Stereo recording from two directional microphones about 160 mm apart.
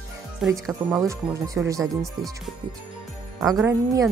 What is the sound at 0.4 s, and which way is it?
Speech, 5° right (ahead or behind).